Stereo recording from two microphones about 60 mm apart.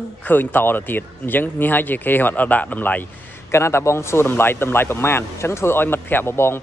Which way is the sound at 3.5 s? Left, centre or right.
Left.